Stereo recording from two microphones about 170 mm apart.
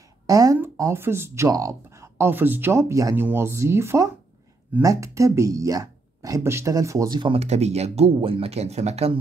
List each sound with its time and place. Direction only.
0.3 s speech: 20° right (ahead or behind); by 9.2 s 40° right (ahead or behind)